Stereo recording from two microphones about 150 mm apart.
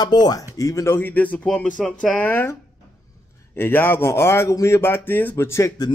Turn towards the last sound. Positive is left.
turn(degrees=20)  # may be behind; listen again after turning